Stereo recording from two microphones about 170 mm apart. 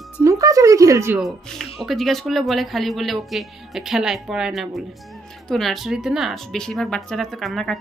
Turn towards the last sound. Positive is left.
turn(degrees=0)  # may be behind; listen again after turning